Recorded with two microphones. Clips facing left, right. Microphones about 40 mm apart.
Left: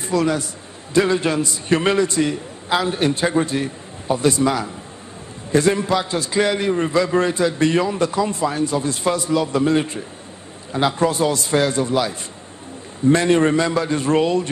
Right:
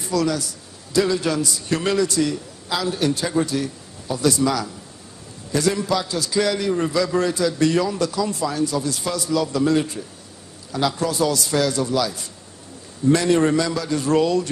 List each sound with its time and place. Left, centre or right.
0.0 s a man's voice: left